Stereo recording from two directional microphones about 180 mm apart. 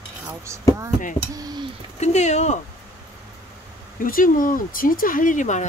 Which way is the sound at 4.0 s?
50° left (ahead or behind).